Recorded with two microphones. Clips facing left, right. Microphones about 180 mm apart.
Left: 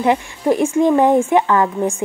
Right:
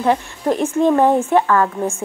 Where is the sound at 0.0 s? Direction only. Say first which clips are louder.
Left 1 dB; 10° left (ahead or behind).